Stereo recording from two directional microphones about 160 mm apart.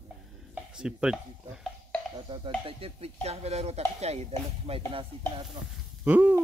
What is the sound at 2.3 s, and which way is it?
Speech, 35° right (ahead or behind).